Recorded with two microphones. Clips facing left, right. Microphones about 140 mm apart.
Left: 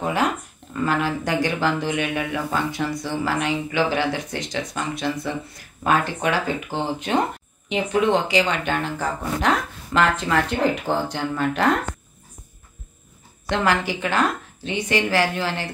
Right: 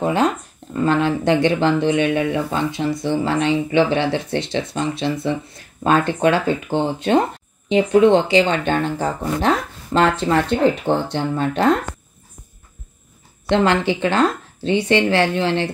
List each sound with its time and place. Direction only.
0.0 s speech: 30° right (ahead or behind)
13.5 s speech: 25° right (ahead or behind)